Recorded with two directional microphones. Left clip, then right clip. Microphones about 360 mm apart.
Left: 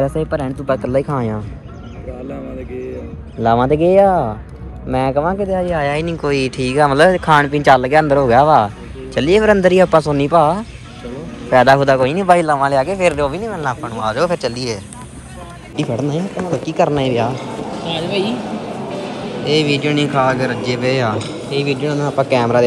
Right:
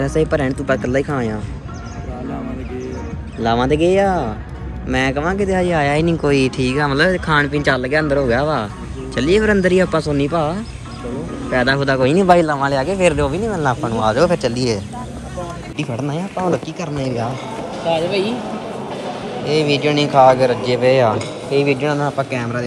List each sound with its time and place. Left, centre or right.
0.0 s speech: centre
3.4 s speech: centre
17.8 s speech: centre
19.4 s speech: centre
20.6 s speech: centre
21.8 s speech: centre